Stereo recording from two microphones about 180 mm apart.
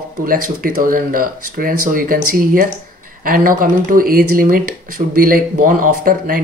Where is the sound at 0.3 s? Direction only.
50° right (ahead or behind).